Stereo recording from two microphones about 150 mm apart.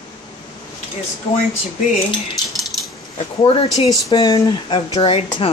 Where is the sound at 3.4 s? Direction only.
35° left (ahead or behind).